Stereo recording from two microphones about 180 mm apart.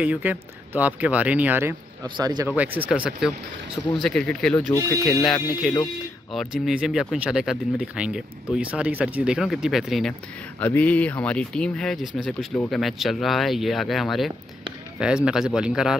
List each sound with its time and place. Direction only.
0.0 s speech: 10° right (ahead or behind)
2.0 s speech: 25° right (ahead or behind)
2.5 s speech: 10° right (ahead or behind)